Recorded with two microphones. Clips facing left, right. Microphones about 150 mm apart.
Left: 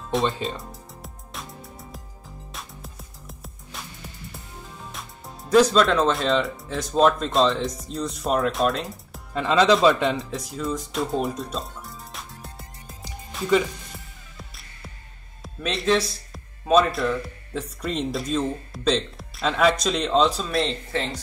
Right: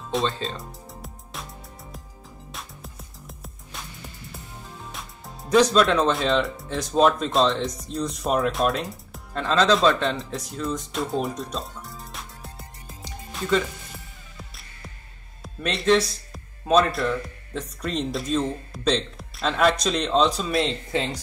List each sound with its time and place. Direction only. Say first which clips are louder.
0.2 s speech: left 2 dB; 20° left (ahead or behind)
0.6 s music: even; centre (ahead or behind)
4.9 s speech: even; centre (ahead or behind)
15.4 s speech: right 1 dB; centre (ahead or behind)
20.9 s speech: right 1 dB; 15° right (ahead or behind)